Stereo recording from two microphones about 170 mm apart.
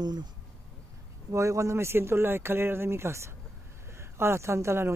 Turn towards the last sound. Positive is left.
turn(degrees=-15)  # may be behind; listen again after turning